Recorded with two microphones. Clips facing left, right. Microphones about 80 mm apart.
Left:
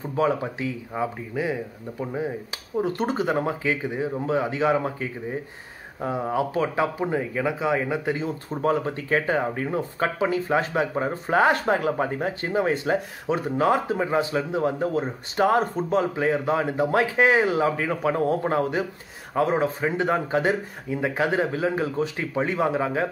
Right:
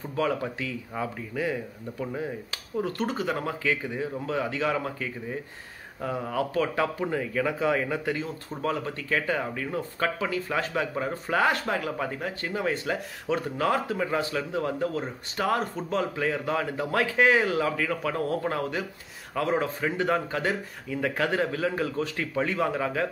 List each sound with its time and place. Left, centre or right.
0.1 s speech: left